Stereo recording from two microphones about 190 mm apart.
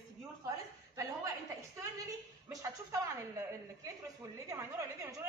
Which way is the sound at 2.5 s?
15° right (ahead or behind).